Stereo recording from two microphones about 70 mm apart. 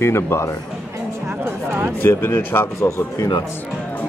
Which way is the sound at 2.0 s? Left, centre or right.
Left.